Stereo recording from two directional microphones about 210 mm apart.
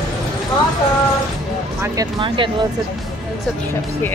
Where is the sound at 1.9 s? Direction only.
25° right (ahead or behind).